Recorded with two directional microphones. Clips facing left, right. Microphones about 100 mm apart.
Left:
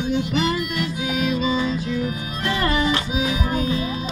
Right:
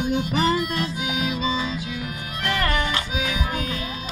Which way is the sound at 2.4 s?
15° left (ahead or behind).